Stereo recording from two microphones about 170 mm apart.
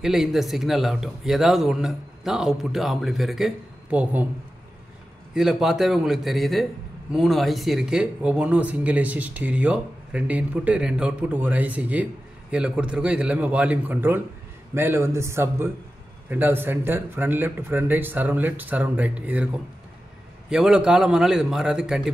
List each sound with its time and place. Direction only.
0.0 s speech: 5° right (ahead or behind)
5.3 s a man's voice: centre (ahead or behind)